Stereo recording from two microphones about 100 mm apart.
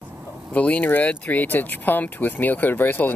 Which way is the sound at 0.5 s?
15° left (ahead or behind).